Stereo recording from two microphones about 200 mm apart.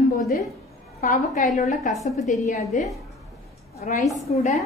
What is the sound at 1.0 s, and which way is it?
Speech, 40° left (ahead or behind).